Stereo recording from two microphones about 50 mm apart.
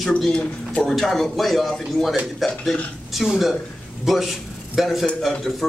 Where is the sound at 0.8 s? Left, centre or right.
Centre.